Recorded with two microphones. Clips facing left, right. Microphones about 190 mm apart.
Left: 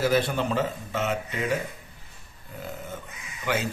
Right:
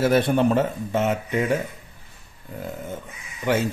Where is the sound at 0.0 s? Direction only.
55° right (ahead or behind).